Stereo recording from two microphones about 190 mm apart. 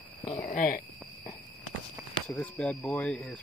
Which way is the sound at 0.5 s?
45° left (ahead or behind).